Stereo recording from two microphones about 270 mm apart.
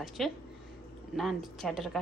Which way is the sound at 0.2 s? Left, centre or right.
Centre.